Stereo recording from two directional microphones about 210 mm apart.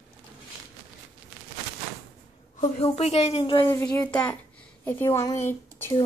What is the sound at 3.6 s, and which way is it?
Speech, 15° left (ahead or behind).